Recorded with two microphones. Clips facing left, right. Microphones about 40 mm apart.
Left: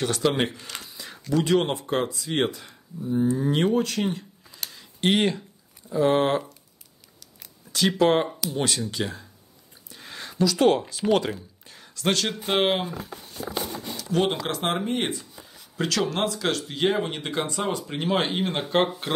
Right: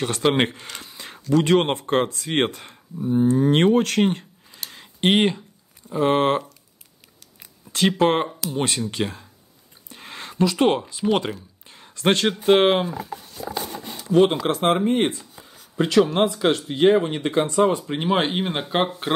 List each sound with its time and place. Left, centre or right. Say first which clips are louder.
0.1 s speech: right 3 dB; right
0.8 s a sound: right 2 dB; right
1.3 s speech: right 4 dB; right
4.6 s a sound: right 3 dB; right
5.1 s speech: right 3 dB; right
5.9 s speech: right 2 dB; right
7.7 s speech: right 1 dB; right
11.7 s a sound: right 5 dB; right
12.6 s speech: right 5 dB; centre
14.5 s speech: right 6 dB; centre
14.9 s speech: right 6 dB; right
15.7 s speech: right 7 dB; right